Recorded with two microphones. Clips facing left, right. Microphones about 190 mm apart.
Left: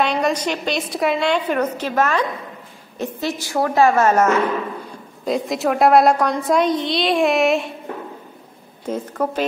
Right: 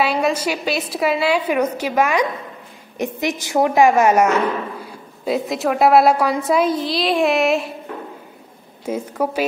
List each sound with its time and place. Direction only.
0.0 s a woman's voice: 5° right (ahead or behind)
5.2 s a woman's voice: centre (ahead or behind)
8.8 s a woman's voice: 10° right (ahead or behind)